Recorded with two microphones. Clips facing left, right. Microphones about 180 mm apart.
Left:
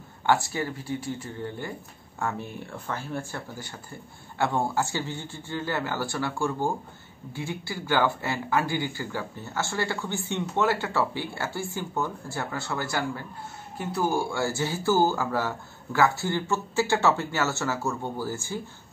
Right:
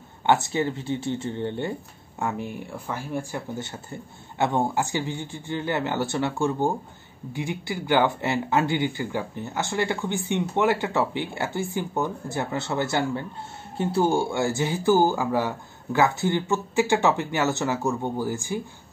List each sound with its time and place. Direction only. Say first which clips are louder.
0.3 s speech: right 3 dB; 20° right (ahead or behind)